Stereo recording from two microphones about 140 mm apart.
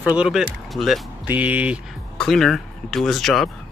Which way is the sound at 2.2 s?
Centre (ahead or behind).